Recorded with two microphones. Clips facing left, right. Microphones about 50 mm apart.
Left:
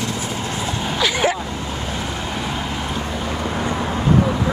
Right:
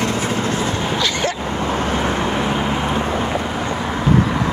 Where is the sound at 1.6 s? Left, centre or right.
Right.